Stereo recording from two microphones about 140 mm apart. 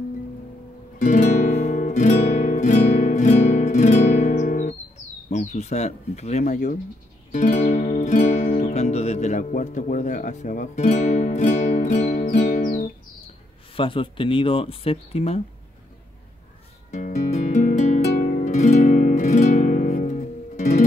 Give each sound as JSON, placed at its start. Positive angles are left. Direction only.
{"t": 0.9, "sound": "guitar", "side_deg": 60}
{"t": 5.3, "sound": "speech", "side_deg": 55}
{"t": 7.3, "sound": "music", "side_deg": 60}
{"t": 13.7, "sound": "speech", "side_deg": 40}
{"t": 16.9, "sound": "music", "side_deg": 60}